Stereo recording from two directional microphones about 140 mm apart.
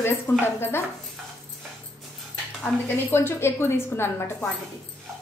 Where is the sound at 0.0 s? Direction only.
15° left (ahead or behind).